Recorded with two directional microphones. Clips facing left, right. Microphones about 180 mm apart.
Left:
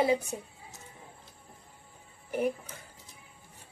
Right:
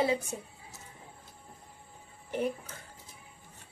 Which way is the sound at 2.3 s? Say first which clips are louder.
Left 2 dB; 10° left (ahead or behind).